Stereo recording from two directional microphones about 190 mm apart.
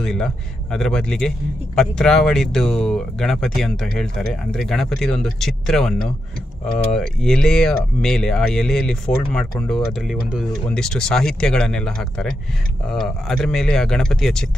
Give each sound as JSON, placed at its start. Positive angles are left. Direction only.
{"t": 0.0, "sound": "speech", "side_deg": 5}